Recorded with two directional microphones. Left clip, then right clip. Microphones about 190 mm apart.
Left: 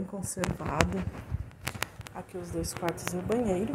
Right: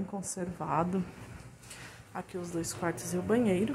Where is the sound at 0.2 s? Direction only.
5° right (ahead or behind).